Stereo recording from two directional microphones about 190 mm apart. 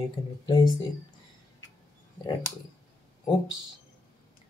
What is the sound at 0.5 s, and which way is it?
Speech, 20° left (ahead or behind).